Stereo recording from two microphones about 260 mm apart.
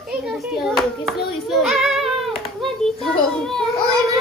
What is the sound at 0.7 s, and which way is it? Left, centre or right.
Hands, centre.